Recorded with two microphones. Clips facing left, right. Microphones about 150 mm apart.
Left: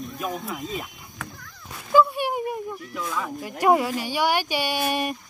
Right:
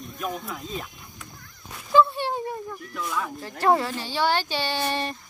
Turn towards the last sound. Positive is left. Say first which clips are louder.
# left 2 dB
turn(degrees=10)  # may be behind; listen again after turning